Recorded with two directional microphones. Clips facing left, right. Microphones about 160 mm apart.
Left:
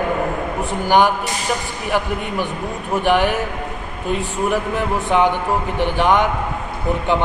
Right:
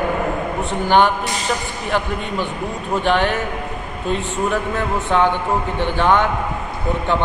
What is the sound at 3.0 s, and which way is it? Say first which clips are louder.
Speech: left 2 dB; 10° left (ahead or behind).